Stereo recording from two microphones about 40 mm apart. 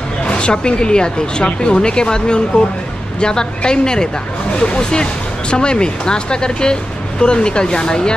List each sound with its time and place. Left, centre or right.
0.2 s speech: left